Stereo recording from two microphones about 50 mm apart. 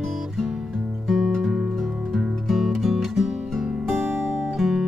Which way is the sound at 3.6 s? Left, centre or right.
Right.